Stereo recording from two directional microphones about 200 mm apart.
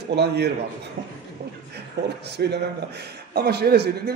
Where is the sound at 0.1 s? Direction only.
55° right (ahead or behind).